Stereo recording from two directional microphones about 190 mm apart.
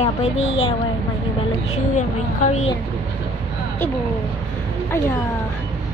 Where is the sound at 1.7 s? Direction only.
40° left (ahead or behind).